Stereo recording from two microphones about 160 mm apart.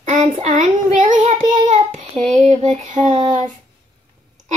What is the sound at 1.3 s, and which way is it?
Child singing, 45° right (ahead or behind).